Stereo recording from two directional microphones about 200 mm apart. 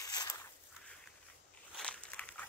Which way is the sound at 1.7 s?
5° left (ahead or behind).